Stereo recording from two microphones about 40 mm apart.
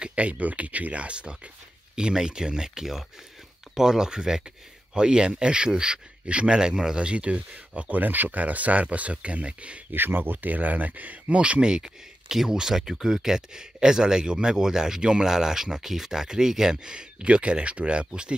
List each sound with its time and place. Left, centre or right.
0.0 s speech: right
9.9 s speech: right
11.2 s speech: right
11.7 s speech: centre